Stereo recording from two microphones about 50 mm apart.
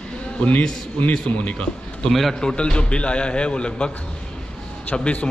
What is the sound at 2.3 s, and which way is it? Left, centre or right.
A man's voice, centre.